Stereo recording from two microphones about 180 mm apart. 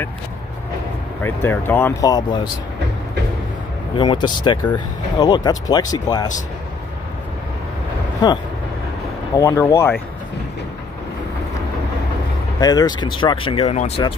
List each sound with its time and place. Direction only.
1.2 s speech: 10° left (ahead or behind)
3.9 s speech: 25° left (ahead or behind)
9.4 s speech: 15° left (ahead or behind)
12.5 s speech: 20° left (ahead or behind)